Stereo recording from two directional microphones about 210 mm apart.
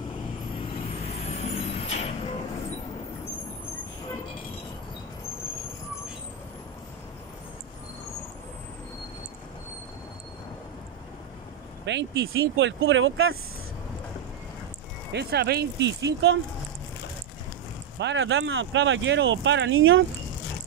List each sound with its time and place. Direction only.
1.2 s vehicle: 30° left (ahead or behind)
11.8 s speech: 60° right (ahead or behind)
15.1 s speech: 50° right (ahead or behind)
17.9 s speech: 60° right (ahead or behind)